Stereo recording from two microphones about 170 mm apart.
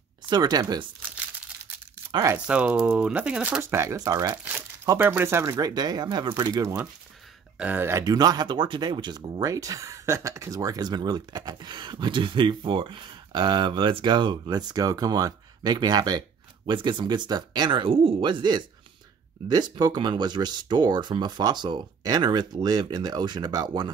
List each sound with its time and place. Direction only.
0.3 s speech: 25° right (ahead or behind)
2.0 s a sound: 20° right (ahead or behind)
2.3 s speech: 5° right (ahead or behind)
7.5 s speech: 10° right (ahead or behind)